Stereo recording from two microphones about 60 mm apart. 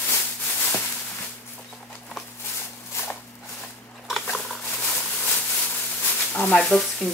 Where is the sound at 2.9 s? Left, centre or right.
Left.